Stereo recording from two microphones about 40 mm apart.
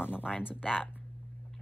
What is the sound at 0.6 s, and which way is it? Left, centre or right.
Speech, centre.